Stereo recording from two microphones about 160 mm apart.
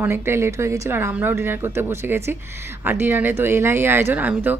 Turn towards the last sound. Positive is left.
turn(degrees=-10)  # may be behind; listen again after turning